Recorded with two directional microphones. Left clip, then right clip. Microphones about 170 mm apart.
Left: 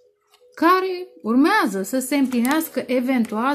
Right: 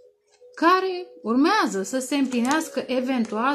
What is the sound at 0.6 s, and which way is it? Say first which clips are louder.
Speech: left 2 dB; 45° left (ahead or behind).